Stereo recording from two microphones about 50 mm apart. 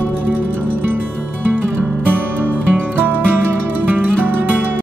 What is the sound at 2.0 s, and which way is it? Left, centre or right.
Music, right.